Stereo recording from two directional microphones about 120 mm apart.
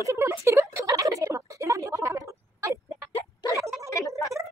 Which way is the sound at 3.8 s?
25° left (ahead or behind).